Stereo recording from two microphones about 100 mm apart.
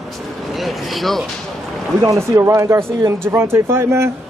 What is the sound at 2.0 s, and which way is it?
Speech, 30° right (ahead or behind).